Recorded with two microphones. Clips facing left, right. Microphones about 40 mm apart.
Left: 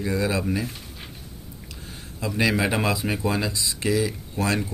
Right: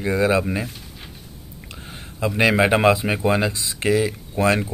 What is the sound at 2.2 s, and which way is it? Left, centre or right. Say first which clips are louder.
Speech: right 5 dB; right.